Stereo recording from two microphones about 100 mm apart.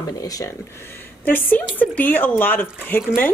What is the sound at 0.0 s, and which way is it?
Speech, 35° left (ahead or behind).